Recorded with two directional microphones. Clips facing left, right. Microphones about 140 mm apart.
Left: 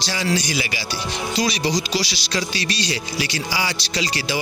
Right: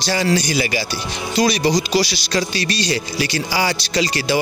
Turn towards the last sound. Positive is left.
turn(degrees=-50)  # may be behind; listen again after turning